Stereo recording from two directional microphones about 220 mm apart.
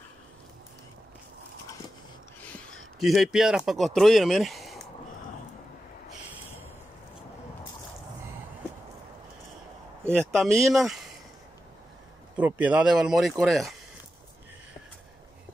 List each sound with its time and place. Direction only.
3.0 s speech: centre (ahead or behind)
10.1 s speech: centre (ahead or behind)
12.4 s speech: 5° right (ahead or behind)